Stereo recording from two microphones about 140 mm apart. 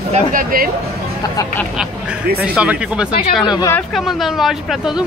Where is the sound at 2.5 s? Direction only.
10° right (ahead or behind).